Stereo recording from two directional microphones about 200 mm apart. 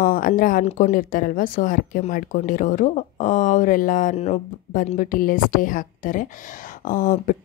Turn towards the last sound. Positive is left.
turn(degrees=40)  # may be behind; listen again after turning